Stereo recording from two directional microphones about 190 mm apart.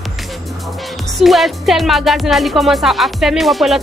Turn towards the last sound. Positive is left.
turn(degrees=0)  # may be behind; listen again after turning